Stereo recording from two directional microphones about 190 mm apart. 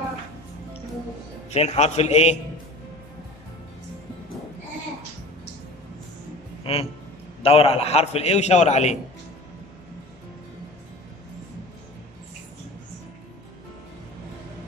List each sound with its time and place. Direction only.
1.5 s a man's voice: 35° left (ahead or behind)
6.6 s a man's voice: 30° left (ahead or behind)